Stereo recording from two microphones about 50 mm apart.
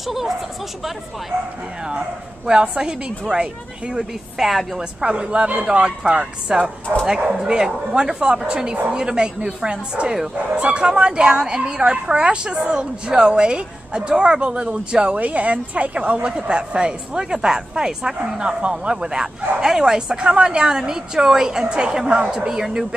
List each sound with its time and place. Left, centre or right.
0.0 s speech: centre
1.9 s speech: centre
4.4 s a woman's voice: centre
5.0 s a woman's voice: centre